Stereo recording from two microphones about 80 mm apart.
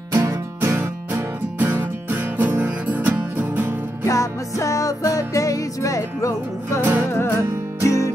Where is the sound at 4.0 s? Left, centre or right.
Left.